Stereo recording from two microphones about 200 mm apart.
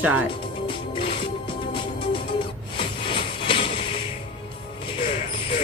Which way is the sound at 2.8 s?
25° left (ahead or behind).